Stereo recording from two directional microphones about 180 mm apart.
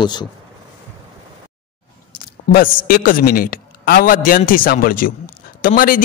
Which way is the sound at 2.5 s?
55° left (ahead or behind).